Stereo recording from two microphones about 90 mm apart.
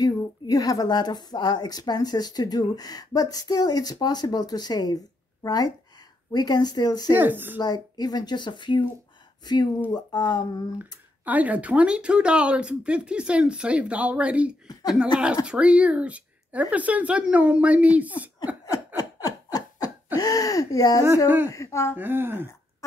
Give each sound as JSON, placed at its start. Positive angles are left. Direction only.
{"t": 0.0, "sound": "a woman's voice", "side_deg": 45}
{"t": 7.2, "sound": "speech", "side_deg": -20}
{"t": 7.5, "sound": "a woman's voice", "side_deg": 50}
{"t": 9.9, "sound": "a woman's voice", "side_deg": 50}
{"t": 10.8, "sound": "speech", "side_deg": -20}
{"t": 14.7, "sound": "speech", "side_deg": 45}
{"t": 15.4, "sound": "speech", "side_deg": -10}
{"t": 18.9, "sound": "a sound", "side_deg": 45}
{"t": 21.5, "sound": "speech", "side_deg": 35}
{"t": 21.9, "sound": "speech", "side_deg": -25}